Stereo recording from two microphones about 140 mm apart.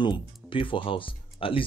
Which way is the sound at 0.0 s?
35° left (ahead or behind).